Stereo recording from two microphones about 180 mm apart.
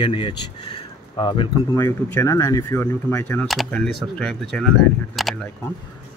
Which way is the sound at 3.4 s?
Centre (ahead or behind).